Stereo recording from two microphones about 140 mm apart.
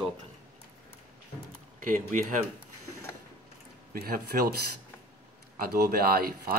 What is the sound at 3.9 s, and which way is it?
Speech, 90° right.